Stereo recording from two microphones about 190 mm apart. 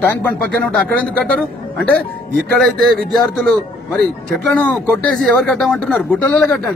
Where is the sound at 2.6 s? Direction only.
Centre (ahead or behind).